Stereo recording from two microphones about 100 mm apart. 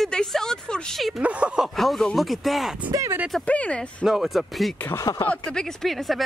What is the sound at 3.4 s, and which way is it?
Speech, 15° left (ahead or behind).